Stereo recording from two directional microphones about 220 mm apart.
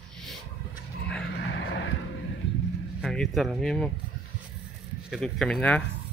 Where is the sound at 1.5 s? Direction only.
55° left (ahead or behind).